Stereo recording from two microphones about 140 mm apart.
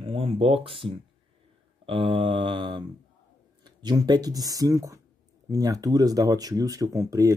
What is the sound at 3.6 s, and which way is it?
Speech, 30° right (ahead or behind).